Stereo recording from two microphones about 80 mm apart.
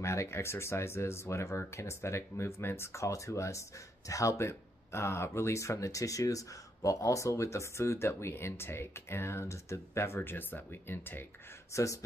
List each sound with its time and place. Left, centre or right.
0.0 s speech: left
11.7 s speech: left